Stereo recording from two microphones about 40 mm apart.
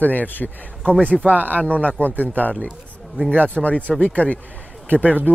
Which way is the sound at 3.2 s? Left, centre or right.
Right.